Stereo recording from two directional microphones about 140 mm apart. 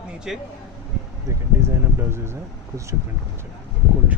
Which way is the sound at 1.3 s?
20° right (ahead or behind).